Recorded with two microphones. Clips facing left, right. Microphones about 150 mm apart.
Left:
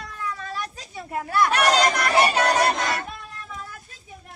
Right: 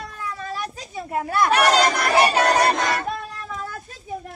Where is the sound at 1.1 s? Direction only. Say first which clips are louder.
Right 1 dB; 25° right (ahead or behind).